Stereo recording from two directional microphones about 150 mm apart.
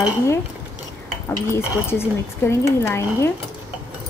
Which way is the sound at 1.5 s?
15° left (ahead or behind).